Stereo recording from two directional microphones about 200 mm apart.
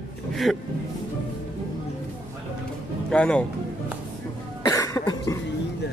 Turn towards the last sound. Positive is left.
turn(degrees=20)  # may be behind; listen again after turning